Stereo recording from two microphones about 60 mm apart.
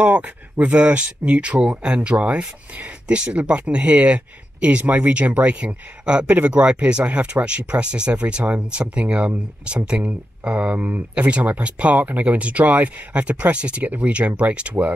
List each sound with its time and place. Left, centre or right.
0.0 s speech: right